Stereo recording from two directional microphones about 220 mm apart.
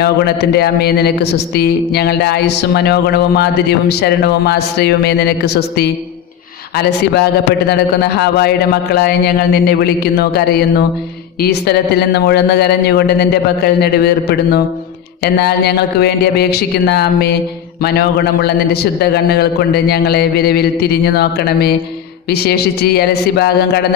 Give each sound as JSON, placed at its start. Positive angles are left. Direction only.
{"t": 0.0, "sound": "a man's voice", "side_deg": 45}
{"t": 7.7, "sound": "a man's voice", "side_deg": 45}
{"t": 11.4, "sound": "a man's voice", "side_deg": 45}